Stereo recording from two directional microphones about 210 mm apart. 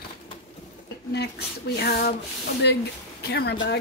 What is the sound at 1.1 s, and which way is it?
Speech, 50° left (ahead or behind).